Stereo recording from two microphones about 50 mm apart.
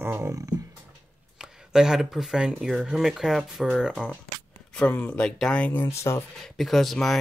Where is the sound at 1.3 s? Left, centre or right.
Centre.